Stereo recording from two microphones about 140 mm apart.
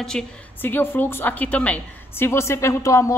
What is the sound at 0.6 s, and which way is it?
A woman's voice, 15° left (ahead or behind).